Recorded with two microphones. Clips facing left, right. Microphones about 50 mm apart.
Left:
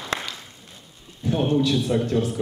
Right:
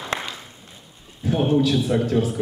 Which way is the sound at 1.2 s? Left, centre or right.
Centre.